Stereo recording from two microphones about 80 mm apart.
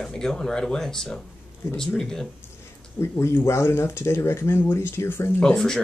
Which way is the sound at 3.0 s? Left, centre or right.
Left.